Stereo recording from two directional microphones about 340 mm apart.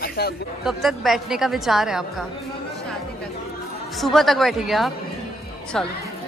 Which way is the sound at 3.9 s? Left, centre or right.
Centre.